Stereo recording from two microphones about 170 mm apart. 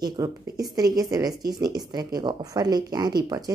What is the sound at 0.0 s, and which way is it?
A woman's voice, 20° right (ahead or behind).